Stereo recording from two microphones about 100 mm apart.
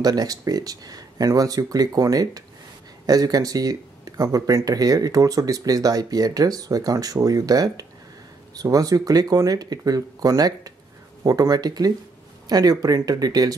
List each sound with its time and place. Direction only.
0.0 s speech: 40° right (ahead or behind)